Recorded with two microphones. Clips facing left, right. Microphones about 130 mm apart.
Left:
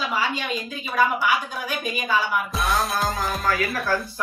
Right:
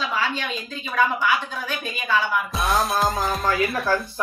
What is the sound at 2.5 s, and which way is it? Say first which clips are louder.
Music: right 3 dB; centre (ahead or behind).